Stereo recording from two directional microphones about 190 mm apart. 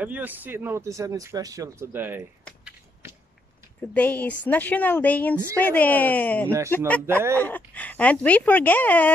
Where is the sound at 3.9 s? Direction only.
10° left (ahead or behind).